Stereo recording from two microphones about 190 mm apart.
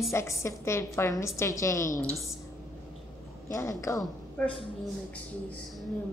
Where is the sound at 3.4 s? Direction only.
15° left (ahead or behind).